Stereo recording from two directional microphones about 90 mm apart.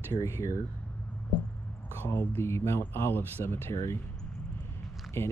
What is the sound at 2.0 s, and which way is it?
Speech, 30° left (ahead or behind).